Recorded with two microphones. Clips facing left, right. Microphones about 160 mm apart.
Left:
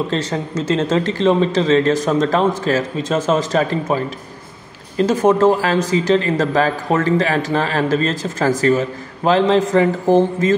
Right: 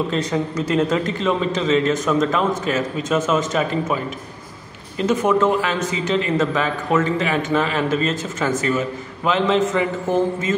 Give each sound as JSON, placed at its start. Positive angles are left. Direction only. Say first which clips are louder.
{"t": 0.1, "sound": "speech", "louder": "left 1 dB", "side_deg": 30}